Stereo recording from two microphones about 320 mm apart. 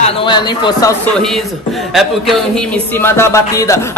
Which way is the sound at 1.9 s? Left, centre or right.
Centre.